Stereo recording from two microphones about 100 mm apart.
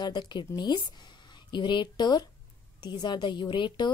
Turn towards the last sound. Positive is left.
turn(degrees=50)  # may be behind; listen again after turning